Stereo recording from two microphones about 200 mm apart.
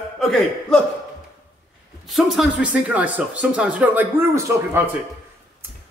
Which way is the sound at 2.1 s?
5° right (ahead or behind).